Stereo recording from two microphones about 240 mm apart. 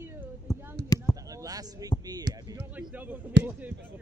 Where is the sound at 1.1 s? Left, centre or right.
Centre.